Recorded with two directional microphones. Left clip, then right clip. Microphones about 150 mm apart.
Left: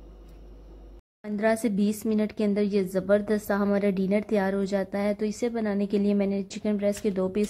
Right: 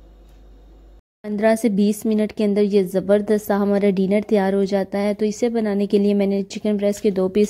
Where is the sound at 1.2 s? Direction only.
35° right (ahead or behind).